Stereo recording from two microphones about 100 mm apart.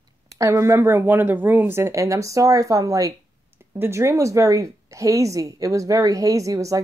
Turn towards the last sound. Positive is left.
turn(degrees=-35)  # may be behind; listen again after turning